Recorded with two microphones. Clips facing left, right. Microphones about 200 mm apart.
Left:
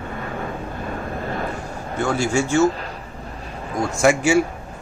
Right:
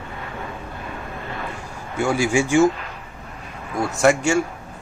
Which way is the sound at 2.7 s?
35° left (ahead or behind).